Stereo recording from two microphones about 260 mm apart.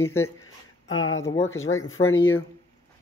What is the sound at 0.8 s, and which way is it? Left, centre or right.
Speech, left.